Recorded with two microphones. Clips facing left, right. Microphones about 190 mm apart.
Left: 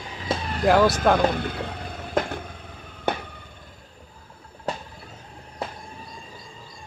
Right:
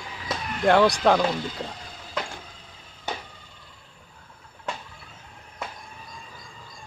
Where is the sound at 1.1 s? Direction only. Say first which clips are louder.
Left 2 dB; 60° left (ahead or behind).